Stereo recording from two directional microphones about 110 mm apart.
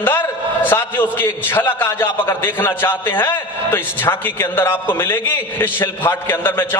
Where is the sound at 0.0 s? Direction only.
20° left (ahead or behind).